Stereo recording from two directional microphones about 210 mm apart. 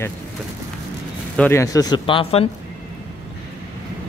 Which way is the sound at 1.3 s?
10° left (ahead or behind).